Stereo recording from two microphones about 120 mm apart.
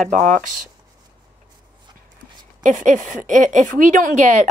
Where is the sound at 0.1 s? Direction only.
90° right.